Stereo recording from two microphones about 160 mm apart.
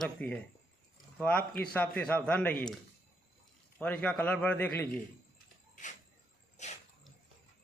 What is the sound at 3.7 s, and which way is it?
A man's voice, 10° left (ahead or behind).